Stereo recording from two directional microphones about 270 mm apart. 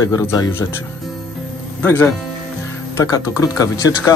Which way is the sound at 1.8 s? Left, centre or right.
Centre.